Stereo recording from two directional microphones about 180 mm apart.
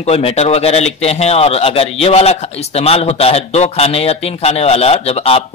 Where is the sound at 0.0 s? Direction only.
35° left (ahead or behind).